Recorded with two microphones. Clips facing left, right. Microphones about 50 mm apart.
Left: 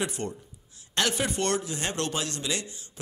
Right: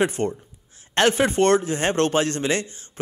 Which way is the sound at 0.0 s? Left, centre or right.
Right.